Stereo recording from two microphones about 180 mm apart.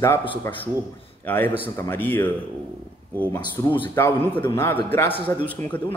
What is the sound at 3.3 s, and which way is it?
A man's voice, 15° left (ahead or behind).